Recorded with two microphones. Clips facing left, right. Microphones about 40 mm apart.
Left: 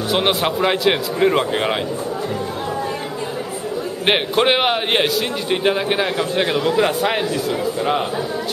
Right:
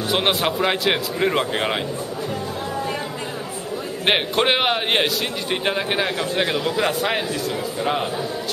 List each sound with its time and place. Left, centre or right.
0.1 s a man's voice: centre
4.0 s a man's voice: centre